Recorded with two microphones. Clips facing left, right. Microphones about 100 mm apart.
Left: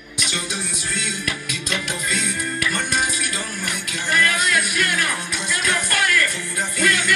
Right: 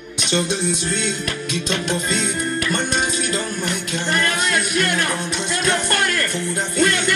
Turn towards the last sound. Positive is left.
turn(degrees=-25)  # may be behind; listen again after turning